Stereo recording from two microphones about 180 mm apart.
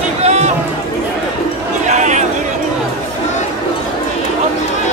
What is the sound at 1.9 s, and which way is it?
Chatter, 40° right (ahead or behind).